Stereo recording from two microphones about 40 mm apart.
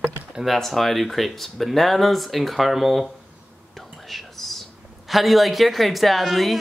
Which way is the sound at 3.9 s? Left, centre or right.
Centre.